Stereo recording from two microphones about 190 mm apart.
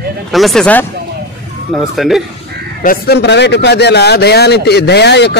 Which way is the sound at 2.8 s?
60° left (ahead or behind).